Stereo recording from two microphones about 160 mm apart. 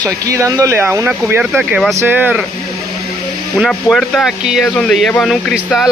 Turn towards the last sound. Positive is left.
turn(degrees=-5)  # may be behind; listen again after turning